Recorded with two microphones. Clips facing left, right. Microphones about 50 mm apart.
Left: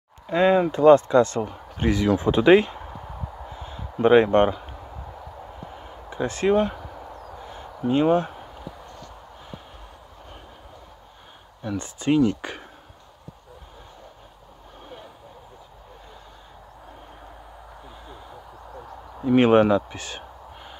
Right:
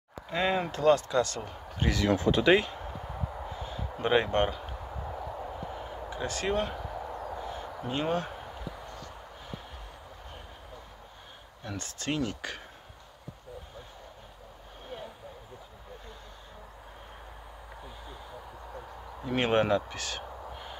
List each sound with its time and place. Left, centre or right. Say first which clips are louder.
0.3 s speech: left 10 dB; centre
3.5 s a sound: left 5 dB; left
6.0 s speech: left 10 dB; left
7.9 s speech: left 11 dB; left
11.7 s speech: left 11 dB; centre
19.2 s speech: left 10 dB; centre